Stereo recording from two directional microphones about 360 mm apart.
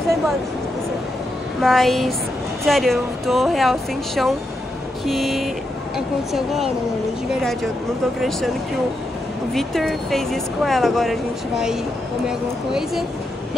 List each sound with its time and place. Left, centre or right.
1.6 s speech: centre
8.2 s speech: centre
9.5 s speech: centre